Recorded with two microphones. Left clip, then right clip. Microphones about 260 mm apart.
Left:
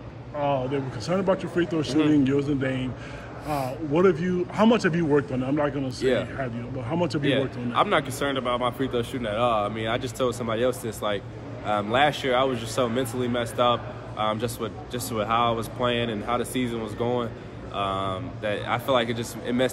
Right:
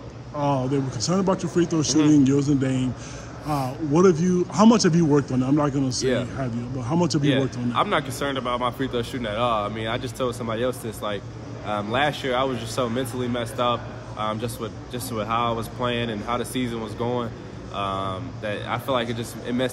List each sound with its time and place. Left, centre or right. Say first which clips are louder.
0.4 s speech: right 1 dB; centre
5.9 s speech: left 2 dB; centre
6.3 s speech: right 1 dB; centre
7.2 s speech: right 2 dB; centre